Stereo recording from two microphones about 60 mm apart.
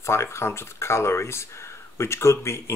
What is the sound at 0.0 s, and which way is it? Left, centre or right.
Speech, left.